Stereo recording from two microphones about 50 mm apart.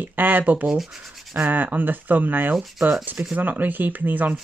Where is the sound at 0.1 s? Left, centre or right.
Right.